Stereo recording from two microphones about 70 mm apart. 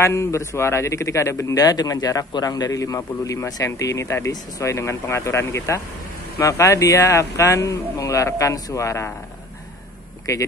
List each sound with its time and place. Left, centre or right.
0.0 s a man's voice: left
1.6 s a man's voice: left
10.3 s a man's voice: left